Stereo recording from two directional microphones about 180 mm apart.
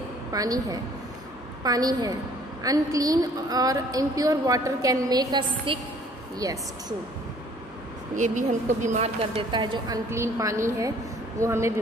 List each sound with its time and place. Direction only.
0.3 s a woman's voice: 20° right (ahead or behind)
8.2 s a woman's voice: 45° right (ahead or behind); by 11.7 s 15° right (ahead or behind)